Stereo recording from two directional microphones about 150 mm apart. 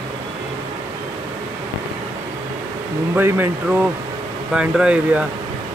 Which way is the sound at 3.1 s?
15° right (ahead or behind).